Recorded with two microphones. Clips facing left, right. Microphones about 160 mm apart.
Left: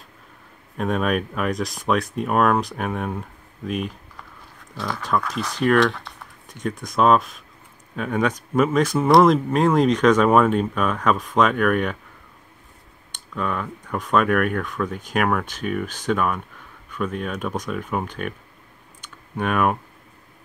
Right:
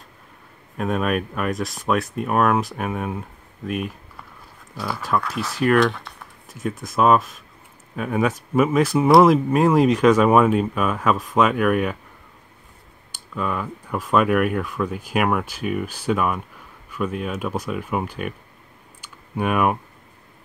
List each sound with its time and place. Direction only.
0.7 s speech: centre (ahead or behind)
13.1 s speech: 5° right (ahead or behind)
18.9 s typing: 10° right (ahead or behind)